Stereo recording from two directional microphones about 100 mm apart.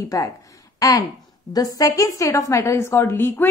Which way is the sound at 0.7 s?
35° left (ahead or behind).